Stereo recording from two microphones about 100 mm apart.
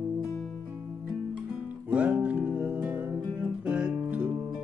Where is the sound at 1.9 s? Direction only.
15° right (ahead or behind).